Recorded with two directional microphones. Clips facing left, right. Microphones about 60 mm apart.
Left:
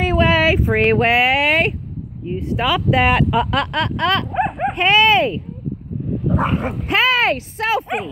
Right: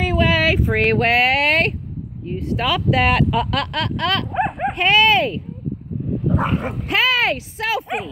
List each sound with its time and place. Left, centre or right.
0.0 s a sound: left; by 1.8 s centre
2.2 s speech: left
4.3 s dog: centre
4.8 s speech: left
6.4 s speech: left